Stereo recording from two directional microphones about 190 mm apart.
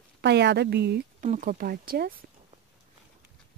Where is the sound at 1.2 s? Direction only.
40° right (ahead or behind).